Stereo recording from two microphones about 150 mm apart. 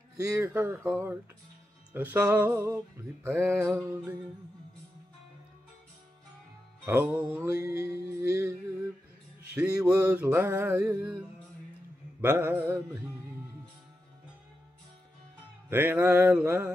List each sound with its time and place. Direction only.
0.3 s music: 20° right (ahead or behind)
6.9 s music: 15° right (ahead or behind)
9.8 s music: 10° right (ahead or behind)
15.7 s music: 15° right (ahead or behind)